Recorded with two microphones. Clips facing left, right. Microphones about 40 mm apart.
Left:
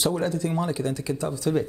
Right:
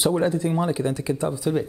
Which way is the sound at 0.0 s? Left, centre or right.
Right.